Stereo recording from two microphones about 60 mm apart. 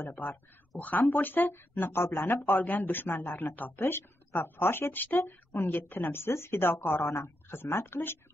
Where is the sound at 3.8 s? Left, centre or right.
Left.